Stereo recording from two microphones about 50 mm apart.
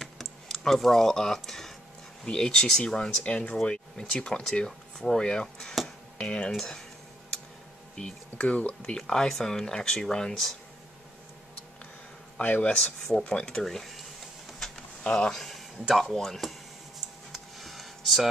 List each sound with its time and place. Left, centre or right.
0.0 s typing: centre
2.2 s speech: centre
6.5 s speech: centre
7.9 s speech: centre
8.9 s speech: centre
12.4 s speech: left
13.3 s speech: centre
15.0 s speech: centre
15.4 s speech: centre
17.3 s a sound: centre